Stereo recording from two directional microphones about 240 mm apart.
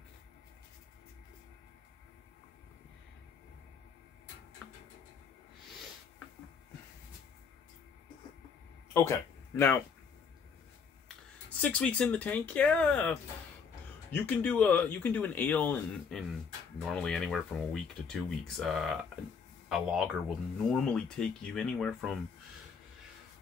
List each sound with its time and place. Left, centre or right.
8.9 s speech: centre
11.6 s speech: centre
14.1 s speech: centre